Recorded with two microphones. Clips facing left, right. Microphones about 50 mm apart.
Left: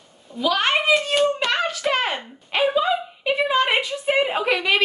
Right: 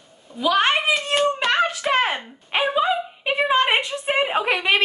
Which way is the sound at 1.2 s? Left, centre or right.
Right.